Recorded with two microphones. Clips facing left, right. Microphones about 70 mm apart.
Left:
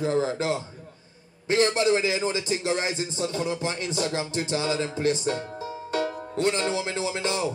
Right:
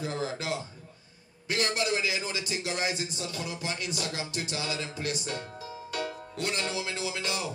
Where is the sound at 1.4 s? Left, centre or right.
Left.